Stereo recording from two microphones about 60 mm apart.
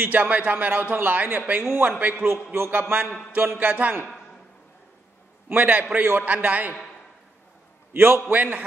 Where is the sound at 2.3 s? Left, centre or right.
Right.